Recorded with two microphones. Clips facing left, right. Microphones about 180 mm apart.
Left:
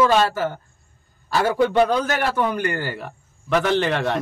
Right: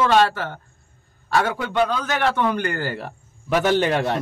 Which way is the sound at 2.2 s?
5° left (ahead or behind).